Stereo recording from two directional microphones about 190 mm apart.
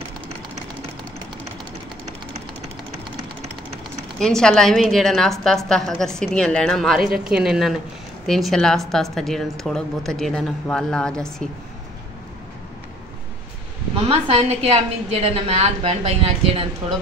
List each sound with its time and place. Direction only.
4.2 s a woman's voice: 5° left (ahead or behind)
13.9 s a woman's voice: 30° right (ahead or behind)